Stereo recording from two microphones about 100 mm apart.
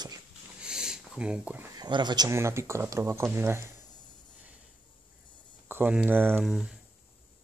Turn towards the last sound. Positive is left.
turn(degrees=-5)  # may be behind; listen again after turning